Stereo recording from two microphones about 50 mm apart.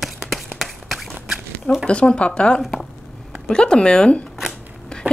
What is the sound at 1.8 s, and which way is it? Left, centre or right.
Speech, left.